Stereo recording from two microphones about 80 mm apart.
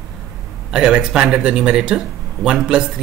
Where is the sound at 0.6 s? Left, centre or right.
Centre.